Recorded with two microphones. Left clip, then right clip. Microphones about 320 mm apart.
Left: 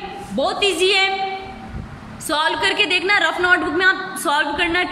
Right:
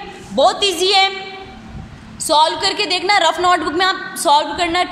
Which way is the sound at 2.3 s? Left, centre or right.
Centre.